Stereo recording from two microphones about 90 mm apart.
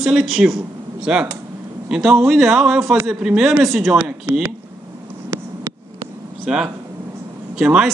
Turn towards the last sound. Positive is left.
turn(degrees=-10)  # may be behind; listen again after turning